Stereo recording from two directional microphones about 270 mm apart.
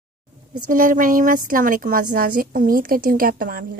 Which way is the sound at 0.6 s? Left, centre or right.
Right.